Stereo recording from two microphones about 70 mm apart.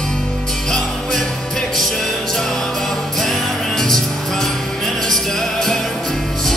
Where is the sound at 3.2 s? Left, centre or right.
Centre.